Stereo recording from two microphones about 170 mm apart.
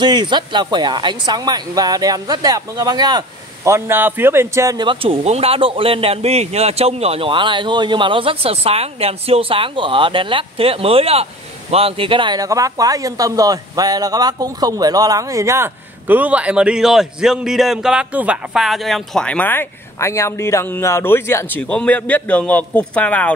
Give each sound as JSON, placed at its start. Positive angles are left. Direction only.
{"t": 0.0, "sound": "speech", "side_deg": -25}
{"t": 5.2, "sound": "speech", "side_deg": -40}